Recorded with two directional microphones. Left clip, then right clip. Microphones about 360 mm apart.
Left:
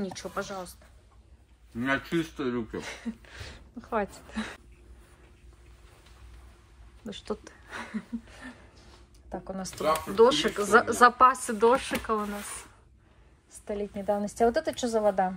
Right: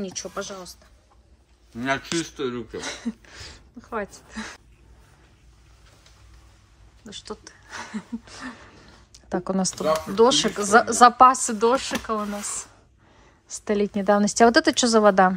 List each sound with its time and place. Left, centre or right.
0.0 s a woman's voice: centre
1.8 s a woman's voice: centre
2.3 s speech: centre
2.8 s speech: centre
7.1 s speech: centre
9.3 s speech: right
9.6 s a woman's voice: centre
13.7 s a woman's voice: right
15.0 s speech: right